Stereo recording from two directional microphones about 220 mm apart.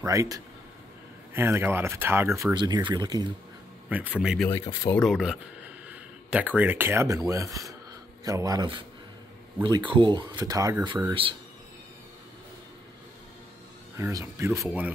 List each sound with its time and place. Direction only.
0.0 s speech: 15° right (ahead or behind)
3.9 s speech: 5° right (ahead or behind)
4.5 s speech: 15° left (ahead or behind)
4.9 s speech: centre (ahead or behind); by 11.3 s 20° right (ahead or behind)
13.9 s speech: 10° right (ahead or behind)